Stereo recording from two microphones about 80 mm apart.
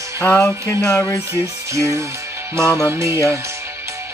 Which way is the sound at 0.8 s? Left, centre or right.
Centre.